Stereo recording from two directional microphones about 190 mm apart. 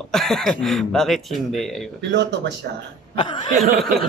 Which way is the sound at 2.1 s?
65° right (ahead or behind).